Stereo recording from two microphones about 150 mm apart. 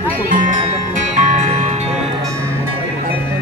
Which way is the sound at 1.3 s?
45° right (ahead or behind).